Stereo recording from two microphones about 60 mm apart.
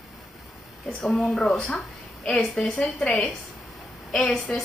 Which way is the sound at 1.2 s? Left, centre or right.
Centre.